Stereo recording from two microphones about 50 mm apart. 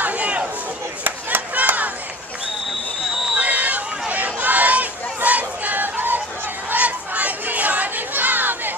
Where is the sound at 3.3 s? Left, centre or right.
Right.